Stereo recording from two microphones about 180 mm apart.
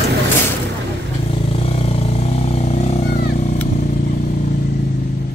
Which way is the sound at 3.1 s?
55° left (ahead or behind).